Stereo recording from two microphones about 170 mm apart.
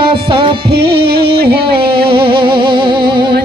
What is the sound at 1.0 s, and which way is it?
Music, 70° right (ahead or behind).